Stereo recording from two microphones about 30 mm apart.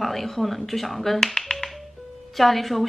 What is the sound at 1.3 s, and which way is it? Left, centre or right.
Finger snapping, centre.